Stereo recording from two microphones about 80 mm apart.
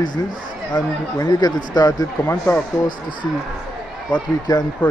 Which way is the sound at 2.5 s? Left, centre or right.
Left.